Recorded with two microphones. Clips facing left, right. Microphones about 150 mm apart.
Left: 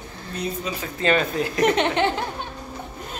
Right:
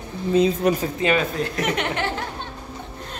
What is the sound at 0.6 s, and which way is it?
Speech, 65° right (ahead or behind).